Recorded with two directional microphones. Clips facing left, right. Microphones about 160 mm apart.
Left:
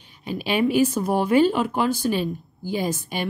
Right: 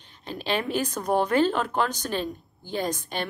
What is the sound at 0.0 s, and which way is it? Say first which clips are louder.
Speech: left 5 dB; 10° left (ahead or behind).